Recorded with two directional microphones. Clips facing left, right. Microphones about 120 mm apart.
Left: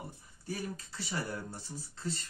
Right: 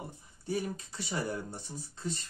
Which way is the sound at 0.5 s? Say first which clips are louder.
Right 5 dB; 20° right (ahead or behind).